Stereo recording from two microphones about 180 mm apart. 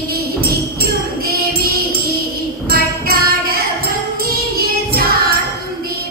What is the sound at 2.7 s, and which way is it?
Jingle bell, 55° right (ahead or behind).